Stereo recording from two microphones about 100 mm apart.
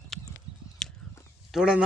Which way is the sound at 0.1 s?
Centre (ahead or behind).